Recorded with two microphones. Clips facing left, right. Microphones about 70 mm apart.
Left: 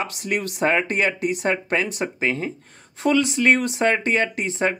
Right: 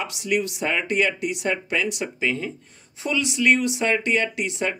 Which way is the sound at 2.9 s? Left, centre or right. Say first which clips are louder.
Left 5 dB; left.